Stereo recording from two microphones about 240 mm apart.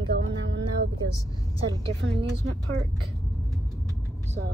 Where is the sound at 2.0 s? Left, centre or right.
Right.